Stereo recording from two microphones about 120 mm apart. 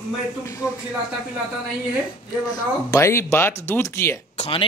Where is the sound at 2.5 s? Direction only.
25° left (ahead or behind).